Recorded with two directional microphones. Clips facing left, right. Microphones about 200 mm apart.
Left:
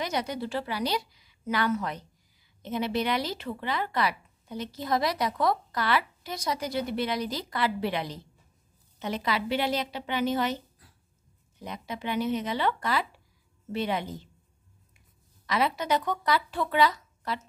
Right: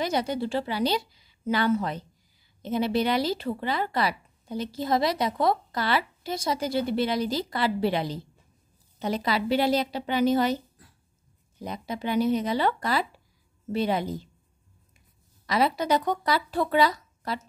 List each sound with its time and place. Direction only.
0.0 s a woman's voice: 30° right (ahead or behind)
15.4 s speech: 35° right (ahead or behind)